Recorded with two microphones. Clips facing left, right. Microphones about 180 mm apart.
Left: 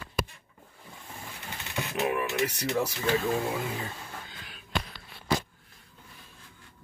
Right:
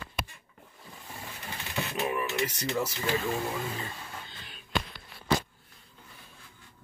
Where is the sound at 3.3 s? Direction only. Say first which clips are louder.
Left 3 dB; 20° left (ahead or behind).